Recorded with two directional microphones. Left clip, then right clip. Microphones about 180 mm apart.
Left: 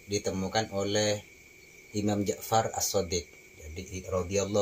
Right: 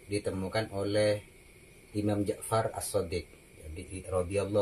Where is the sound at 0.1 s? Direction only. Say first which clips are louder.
Left 2 dB; 25° left (ahead or behind).